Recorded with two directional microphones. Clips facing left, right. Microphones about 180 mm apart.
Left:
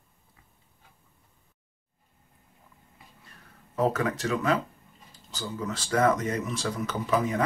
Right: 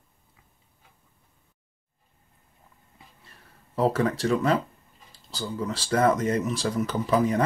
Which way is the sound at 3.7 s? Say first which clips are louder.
Right 2 dB; 30° right (ahead or behind).